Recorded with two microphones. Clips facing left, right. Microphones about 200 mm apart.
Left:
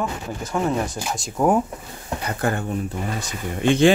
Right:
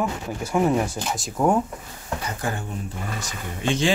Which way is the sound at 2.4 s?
60° left (ahead or behind).